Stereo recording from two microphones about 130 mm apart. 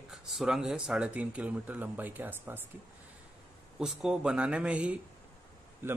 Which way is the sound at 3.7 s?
5° right (ahead or behind).